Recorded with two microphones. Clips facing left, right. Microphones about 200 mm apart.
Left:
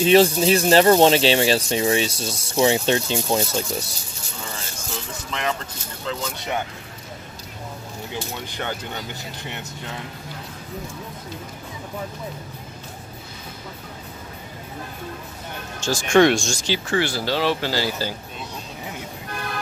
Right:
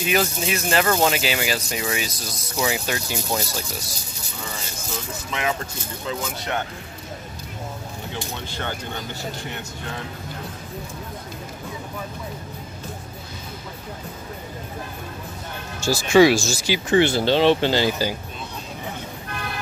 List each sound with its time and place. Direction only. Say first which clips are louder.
0.0 s speech: left 8 dB; 30° left (ahead or behind)
5.3 s speech: right 1 dB; 5° right (ahead or behind)
8.5 s speech: left 1 dB; 15° left (ahead or behind)
15.8 s speech: right 1 dB; 5° right (ahead or behind)
16.9 s speech: right 6 dB; 20° right (ahead or behind)